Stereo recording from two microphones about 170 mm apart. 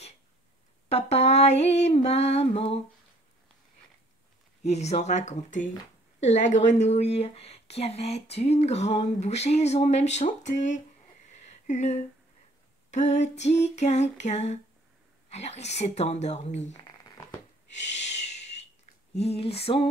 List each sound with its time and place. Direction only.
0.8 s speech: 40° left (ahead or behind)
4.6 s speech: 40° left (ahead or behind)
11.4 s a sound: 45° left (ahead or behind)
12.9 s speech: 40° left (ahead or behind)
17.6 s owl: 40° left (ahead or behind)
19.1 s speech: 35° left (ahead or behind)